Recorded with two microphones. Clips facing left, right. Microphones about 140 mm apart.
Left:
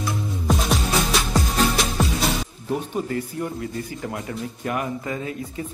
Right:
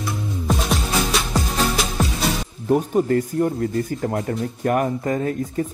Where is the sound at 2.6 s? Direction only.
45° right (ahead or behind).